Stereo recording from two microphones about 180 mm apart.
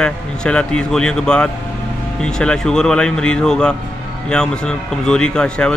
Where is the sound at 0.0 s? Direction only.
5° left (ahead or behind).